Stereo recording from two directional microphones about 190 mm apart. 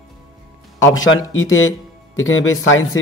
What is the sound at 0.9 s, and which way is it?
Speech, 90° left.